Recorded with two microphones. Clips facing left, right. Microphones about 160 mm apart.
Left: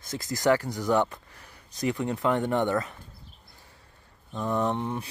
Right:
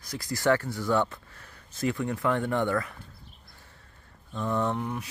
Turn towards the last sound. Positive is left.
turn(degrees=25)  # may be behind; listen again after turning